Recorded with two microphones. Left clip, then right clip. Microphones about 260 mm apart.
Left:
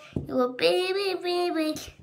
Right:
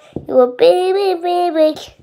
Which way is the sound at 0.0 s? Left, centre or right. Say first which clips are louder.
Right 14 dB; right.